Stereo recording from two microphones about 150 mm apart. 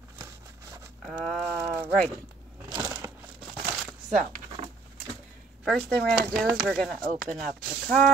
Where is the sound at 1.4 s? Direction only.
15° right (ahead or behind).